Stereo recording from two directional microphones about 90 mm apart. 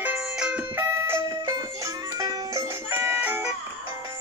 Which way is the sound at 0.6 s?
25° right (ahead or behind).